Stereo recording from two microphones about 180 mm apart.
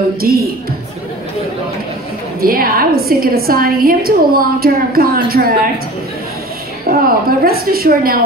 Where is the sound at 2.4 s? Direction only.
55° right (ahead or behind).